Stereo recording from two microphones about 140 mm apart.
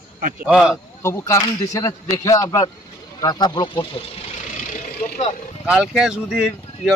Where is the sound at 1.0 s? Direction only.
20° left (ahead or behind).